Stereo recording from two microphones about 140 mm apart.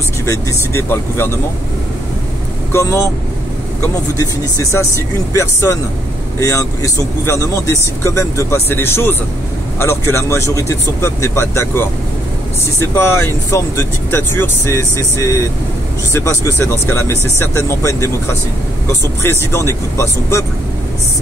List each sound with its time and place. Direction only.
0.2 s speech: 20° left (ahead or behind)
2.7 s speech: 20° left (ahead or behind)
4.2 s speech: 25° left (ahead or behind)